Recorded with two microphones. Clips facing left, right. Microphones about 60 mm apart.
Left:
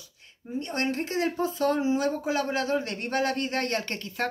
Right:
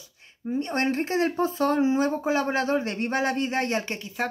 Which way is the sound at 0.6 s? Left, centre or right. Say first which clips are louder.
Right 3 dB; right.